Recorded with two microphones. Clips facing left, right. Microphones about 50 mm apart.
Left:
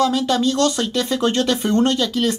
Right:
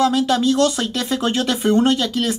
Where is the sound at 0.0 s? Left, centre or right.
Centre.